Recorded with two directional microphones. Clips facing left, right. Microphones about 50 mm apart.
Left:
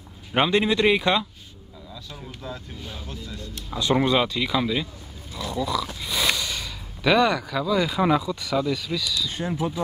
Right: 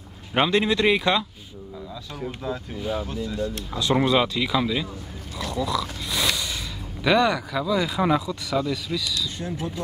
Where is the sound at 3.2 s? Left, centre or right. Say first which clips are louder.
Right 9 dB; right.